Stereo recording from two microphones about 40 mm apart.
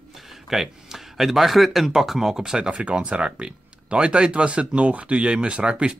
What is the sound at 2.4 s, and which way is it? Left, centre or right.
Speech, centre.